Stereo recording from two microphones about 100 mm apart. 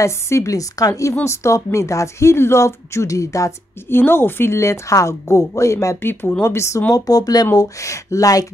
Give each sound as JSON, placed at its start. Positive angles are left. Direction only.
{"t": 0.0, "sound": "a woman's voice", "side_deg": 30}
{"t": 6.9, "sound": "a woman's voice", "side_deg": 40}